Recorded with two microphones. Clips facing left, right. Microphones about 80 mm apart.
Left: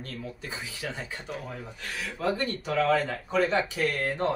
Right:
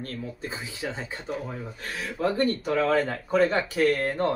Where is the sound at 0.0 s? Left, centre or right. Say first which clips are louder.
Right 4 dB; right.